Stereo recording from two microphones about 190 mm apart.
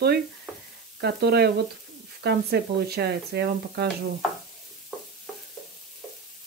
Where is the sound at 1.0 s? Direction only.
55° right (ahead or behind).